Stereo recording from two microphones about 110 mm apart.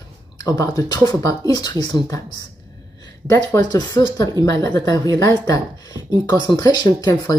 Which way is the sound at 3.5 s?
35° left (ahead or behind).